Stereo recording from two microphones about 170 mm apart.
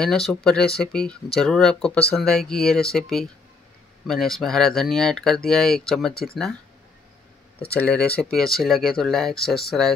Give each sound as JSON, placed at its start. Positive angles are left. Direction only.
{"t": 0.0, "sound": "speech", "side_deg": 5}
{"t": 7.7, "sound": "speech", "side_deg": 10}